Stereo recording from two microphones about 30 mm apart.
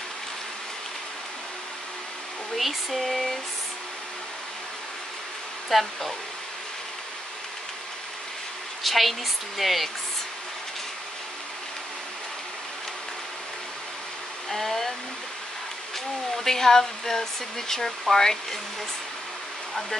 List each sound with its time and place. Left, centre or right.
2.5 s speech: centre
5.7 s speech: centre
8.8 s speech: centre
14.5 s speech: centre
16.4 s speech: centre